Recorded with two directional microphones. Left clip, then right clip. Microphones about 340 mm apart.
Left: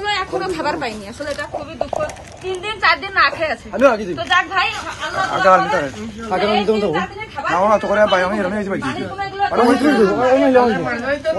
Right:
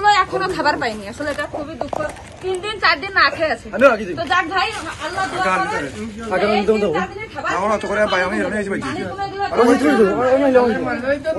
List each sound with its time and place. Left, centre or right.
0.0 s speech: centre
2.6 s a woman's voice: centre
3.7 s speech: left
4.2 s a woman's voice: centre
5.3 s speech: centre
10.7 s a woman's voice: centre